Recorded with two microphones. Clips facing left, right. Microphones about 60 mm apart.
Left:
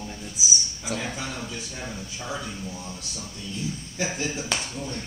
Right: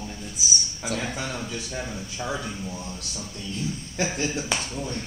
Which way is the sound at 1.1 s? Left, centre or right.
Right.